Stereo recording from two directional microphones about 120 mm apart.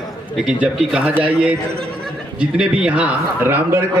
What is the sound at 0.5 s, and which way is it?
A man's voice, 5° right (ahead or behind).